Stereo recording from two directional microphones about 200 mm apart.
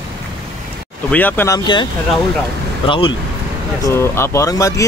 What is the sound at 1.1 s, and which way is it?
Speech, 10° left (ahead or behind).